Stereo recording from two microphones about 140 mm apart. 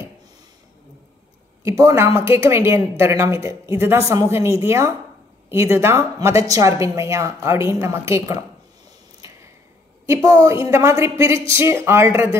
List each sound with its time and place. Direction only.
1.6 s a woman's voice: 20° right (ahead or behind)
10.0 s a woman's voice: 20° right (ahead or behind)